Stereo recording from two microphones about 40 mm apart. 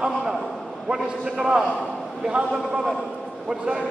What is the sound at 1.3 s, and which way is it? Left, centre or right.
A man's voice, centre.